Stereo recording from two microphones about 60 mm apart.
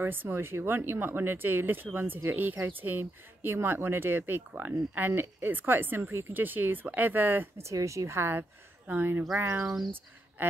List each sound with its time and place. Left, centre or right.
0.0 s speech: right
7.6 s a woman's voice: right